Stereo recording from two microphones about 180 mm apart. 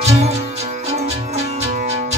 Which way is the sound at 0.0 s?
35° right (ahead or behind).